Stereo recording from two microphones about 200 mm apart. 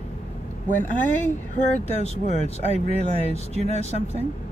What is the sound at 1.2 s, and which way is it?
Speech, 35° left (ahead or behind).